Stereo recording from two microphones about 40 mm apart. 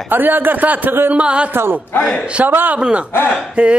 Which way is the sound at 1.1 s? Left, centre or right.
Right.